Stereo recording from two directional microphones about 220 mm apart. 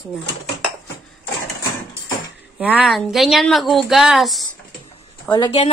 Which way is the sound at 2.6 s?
5° right (ahead or behind).